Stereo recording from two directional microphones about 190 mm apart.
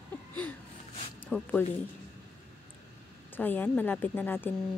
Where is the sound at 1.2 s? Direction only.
10° left (ahead or behind).